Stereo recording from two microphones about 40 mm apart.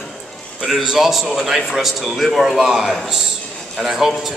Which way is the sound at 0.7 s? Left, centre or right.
Centre.